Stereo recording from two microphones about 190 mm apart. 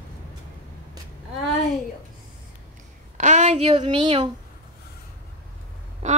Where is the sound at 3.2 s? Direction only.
35° right (ahead or behind).